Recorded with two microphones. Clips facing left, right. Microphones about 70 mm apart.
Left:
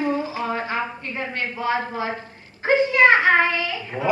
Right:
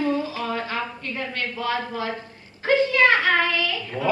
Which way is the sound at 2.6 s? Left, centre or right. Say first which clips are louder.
Left 2 dB; left.